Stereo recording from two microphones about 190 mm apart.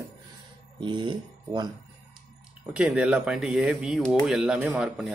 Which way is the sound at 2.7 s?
5° right (ahead or behind).